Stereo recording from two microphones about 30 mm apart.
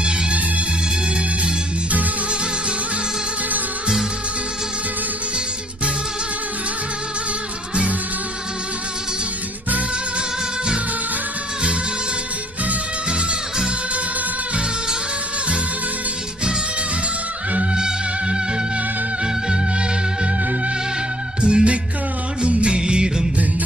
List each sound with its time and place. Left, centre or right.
17.7 s music: right
21.4 s music: right